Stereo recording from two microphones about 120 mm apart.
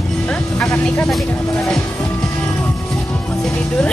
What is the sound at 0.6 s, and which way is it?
Speech, 10° left (ahead or behind).